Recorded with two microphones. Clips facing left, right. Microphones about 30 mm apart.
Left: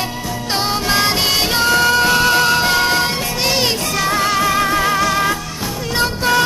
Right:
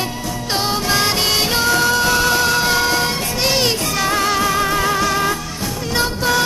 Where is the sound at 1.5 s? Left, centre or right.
Left.